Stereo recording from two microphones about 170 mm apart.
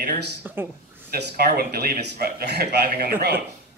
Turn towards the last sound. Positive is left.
turn(degrees=-65)  # may be behind; listen again after turning